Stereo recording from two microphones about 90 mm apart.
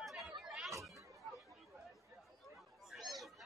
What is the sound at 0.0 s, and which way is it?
Chatter, centre (ahead or behind).